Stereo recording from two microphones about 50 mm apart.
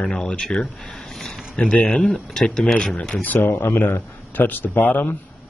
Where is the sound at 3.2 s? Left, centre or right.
Left.